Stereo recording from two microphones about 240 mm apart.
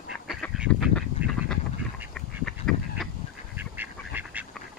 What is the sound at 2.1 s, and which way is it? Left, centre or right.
Goose, centre.